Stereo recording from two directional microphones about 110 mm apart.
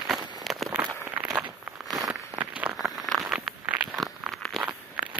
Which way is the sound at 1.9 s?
40° right (ahead or behind).